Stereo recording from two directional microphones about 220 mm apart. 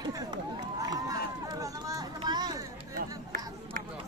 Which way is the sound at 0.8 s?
15° right (ahead or behind).